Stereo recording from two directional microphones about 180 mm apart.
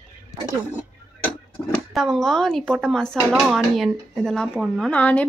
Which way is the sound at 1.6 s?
5° left (ahead or behind).